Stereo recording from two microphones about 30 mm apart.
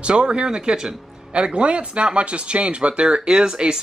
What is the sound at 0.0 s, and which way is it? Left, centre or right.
Speech, right.